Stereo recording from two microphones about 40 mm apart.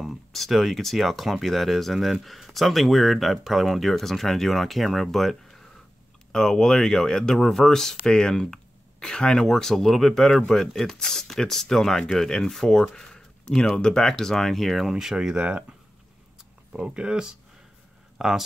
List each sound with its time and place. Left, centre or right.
0.3 s speech: centre
9.5 s speech: centre
12.9 s a sound: centre
13.7 s speech: centre
14.9 s speech: centre
15.3 s speech: right
16.7 s speech: right
18.1 s a sound: centre